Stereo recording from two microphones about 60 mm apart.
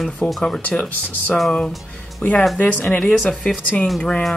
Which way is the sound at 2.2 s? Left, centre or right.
Left.